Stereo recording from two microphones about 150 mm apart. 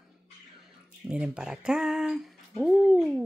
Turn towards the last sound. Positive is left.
turn(degrees=-5)  # may be behind; listen again after turning